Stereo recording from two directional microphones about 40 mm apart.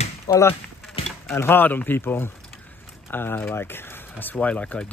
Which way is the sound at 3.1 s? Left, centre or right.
Left.